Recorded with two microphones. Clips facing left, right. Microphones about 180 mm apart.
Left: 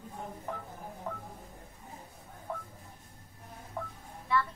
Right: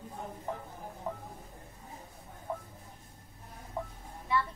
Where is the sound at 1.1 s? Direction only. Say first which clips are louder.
Right 2 dB; 10° right (ahead or behind).